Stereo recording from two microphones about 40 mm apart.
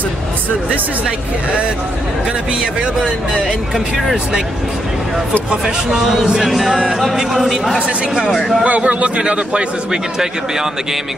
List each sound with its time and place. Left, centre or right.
5.9 s speech: centre
6.2 s music: centre
6.9 s speech: centre
8.6 s a man's voice: right